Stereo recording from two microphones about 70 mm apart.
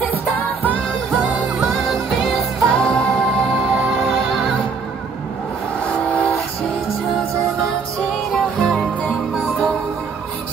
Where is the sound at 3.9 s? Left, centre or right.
Centre.